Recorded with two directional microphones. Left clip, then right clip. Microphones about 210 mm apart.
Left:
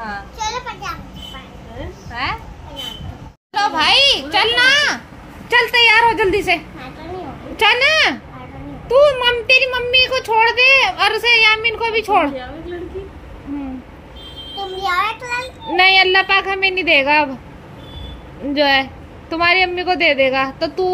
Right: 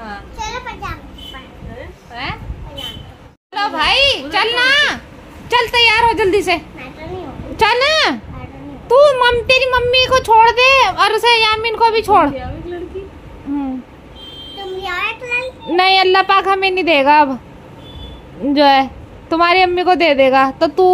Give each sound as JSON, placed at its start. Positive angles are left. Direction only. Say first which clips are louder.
{"t": 0.4, "sound": "children playing", "louder": "even", "side_deg": -5}
{"t": 2.2, "sound": "a woman's voice", "louder": "left 3 dB", "side_deg": 5}
{"t": 3.5, "sound": "a sound", "louder": "left 1 dB", "side_deg": -5}
{"t": 5.5, "sound": "a child's voice", "louder": "even", "side_deg": -20}
{"t": 14.8, "sound": "a sound", "louder": "left 3 dB", "side_deg": 10}
{"t": 15.7, "sound": "a child's voice", "louder": "even", "side_deg": -25}
{"t": 18.5, "sound": "a child's voice", "louder": "right 4 dB", "side_deg": -25}